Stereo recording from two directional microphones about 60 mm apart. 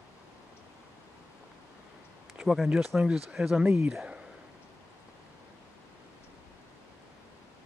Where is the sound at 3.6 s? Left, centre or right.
Right.